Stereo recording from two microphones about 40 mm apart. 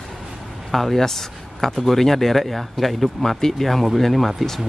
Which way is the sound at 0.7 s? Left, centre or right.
Centre.